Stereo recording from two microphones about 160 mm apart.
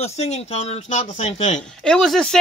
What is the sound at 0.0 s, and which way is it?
Speech, 40° left (ahead or behind).